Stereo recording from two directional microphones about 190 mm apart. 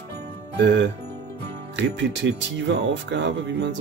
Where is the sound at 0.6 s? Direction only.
70° right (ahead or behind).